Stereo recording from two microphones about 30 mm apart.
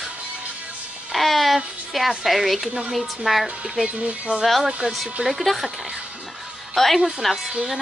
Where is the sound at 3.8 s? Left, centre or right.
Right.